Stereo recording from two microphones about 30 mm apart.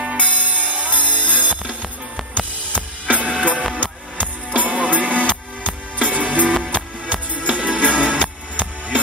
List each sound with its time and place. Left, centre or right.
0.2 s music: right
2.3 s drum kit: left
3.2 s music: right
3.8 s music: left
4.6 s music: right